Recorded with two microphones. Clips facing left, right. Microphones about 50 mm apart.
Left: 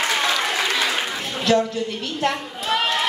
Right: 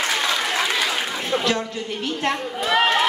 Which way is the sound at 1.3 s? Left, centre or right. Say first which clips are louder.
Left 4 dB; right.